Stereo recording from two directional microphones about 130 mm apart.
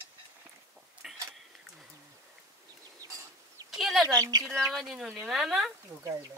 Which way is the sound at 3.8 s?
Centre (ahead or behind).